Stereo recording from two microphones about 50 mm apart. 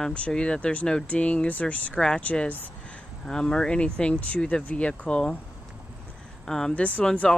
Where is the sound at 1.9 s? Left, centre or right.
Centre.